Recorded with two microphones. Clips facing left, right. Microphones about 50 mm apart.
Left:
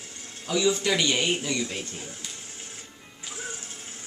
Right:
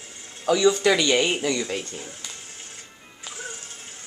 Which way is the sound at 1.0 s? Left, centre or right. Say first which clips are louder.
Right 4 dB; right.